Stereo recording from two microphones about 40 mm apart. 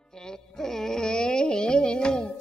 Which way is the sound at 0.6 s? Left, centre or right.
Centre.